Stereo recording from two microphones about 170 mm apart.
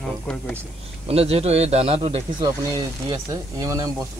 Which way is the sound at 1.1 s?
35° right (ahead or behind).